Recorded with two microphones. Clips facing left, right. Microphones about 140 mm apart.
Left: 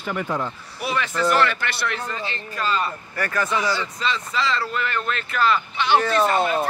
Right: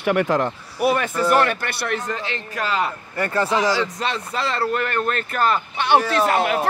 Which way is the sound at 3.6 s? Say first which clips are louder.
Right 4 dB; 85° right.